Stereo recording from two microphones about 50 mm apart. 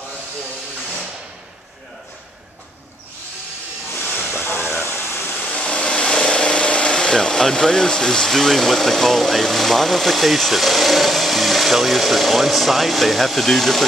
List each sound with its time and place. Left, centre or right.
3.9 s hiss: left
4.5 s a sound: left
4.8 s vehicle: left
5.4 s speech: left; by 13.8 s centre